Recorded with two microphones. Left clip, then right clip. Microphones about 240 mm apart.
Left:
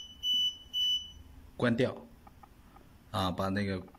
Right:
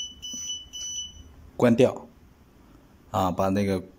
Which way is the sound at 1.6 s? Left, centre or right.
Centre.